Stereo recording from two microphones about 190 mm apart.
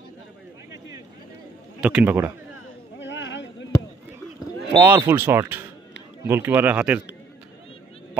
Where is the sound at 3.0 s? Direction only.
70° left (ahead or behind).